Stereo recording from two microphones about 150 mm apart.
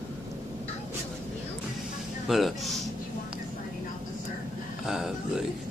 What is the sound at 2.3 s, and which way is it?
Speech, centre (ahead or behind).